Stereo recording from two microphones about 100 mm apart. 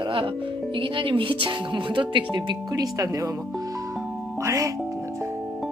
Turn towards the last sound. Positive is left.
turn(degrees=-30)  # may be behind; listen again after turning